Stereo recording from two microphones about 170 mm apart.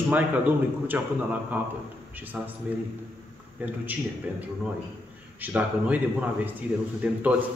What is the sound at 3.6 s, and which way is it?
Speech, 10° right (ahead or behind).